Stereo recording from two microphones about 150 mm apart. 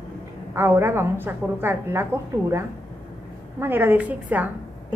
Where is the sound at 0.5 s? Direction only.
15° right (ahead or behind).